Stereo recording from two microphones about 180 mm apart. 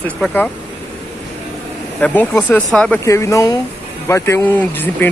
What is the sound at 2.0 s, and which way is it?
Speech, 10° left (ahead or behind).